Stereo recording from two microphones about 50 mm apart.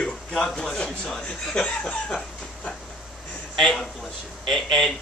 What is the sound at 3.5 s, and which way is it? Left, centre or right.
A man's voice, centre.